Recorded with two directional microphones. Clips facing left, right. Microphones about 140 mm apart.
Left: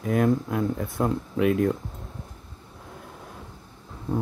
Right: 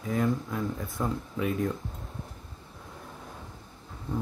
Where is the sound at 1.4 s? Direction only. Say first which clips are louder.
Left 8 dB; 80° left.